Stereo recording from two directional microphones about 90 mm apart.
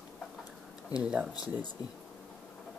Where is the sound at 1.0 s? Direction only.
10° right (ahead or behind).